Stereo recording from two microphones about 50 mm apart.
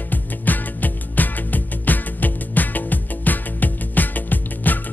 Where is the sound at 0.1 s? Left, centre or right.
Left.